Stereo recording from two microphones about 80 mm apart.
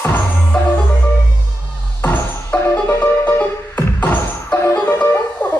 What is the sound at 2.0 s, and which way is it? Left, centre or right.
Music, left.